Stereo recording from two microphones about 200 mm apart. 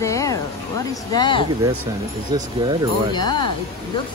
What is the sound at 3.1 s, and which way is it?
Speech, 20° left (ahead or behind).